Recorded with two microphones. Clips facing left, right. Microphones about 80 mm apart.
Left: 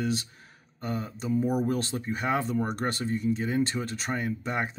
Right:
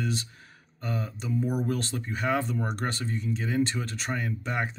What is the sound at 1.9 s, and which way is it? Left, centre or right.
Speech, left.